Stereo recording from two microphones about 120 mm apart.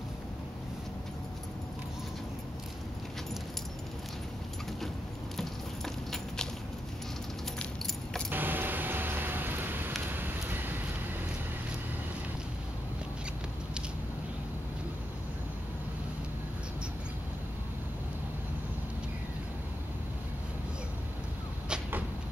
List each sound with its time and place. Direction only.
7.5 s keys jangling: 5° left (ahead or behind)
8.3 s a sound: 15° right (ahead or behind)
21.6 s cupboard open or close: 5° right (ahead or behind)